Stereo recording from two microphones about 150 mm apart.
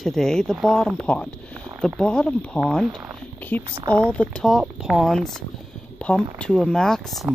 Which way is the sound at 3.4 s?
10° left (ahead or behind).